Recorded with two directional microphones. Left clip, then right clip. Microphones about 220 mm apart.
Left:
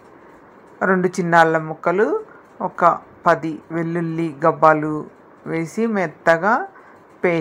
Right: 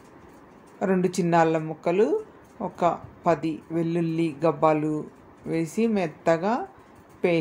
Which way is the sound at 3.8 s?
40° left (ahead or behind).